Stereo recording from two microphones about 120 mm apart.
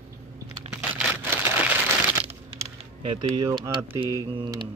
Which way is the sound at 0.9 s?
15° right (ahead or behind).